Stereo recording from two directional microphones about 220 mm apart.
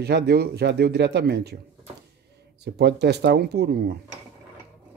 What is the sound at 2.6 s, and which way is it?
Speech, 50° right (ahead or behind).